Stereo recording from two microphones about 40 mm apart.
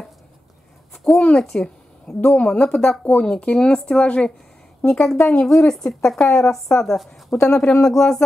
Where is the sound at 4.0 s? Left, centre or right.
Left.